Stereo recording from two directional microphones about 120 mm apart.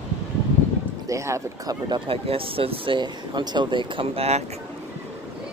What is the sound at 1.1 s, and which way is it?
Speech, 25° right (ahead or behind).